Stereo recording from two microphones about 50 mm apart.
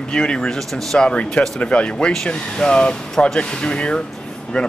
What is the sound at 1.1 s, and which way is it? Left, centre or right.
Speech, centre.